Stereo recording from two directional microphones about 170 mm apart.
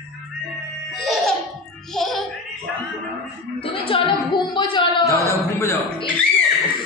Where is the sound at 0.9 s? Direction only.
Centre (ahead or behind).